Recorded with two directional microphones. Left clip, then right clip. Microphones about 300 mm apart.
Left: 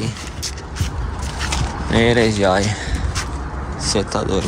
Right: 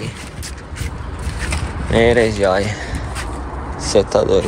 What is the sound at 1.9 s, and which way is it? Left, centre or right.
Speech, centre.